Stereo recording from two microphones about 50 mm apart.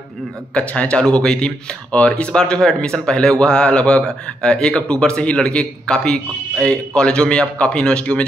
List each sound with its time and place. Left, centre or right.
0.6 s speech: left